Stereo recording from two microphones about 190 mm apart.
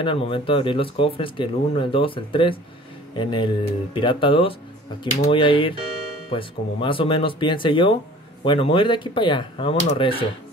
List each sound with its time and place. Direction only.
0.0 s speech: 25° left (ahead or behind)